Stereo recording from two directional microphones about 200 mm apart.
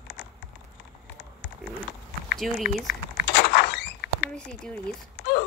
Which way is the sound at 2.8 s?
55° left (ahead or behind).